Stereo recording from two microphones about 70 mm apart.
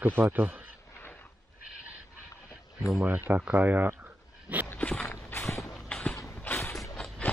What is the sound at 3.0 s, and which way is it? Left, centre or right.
Speech, right.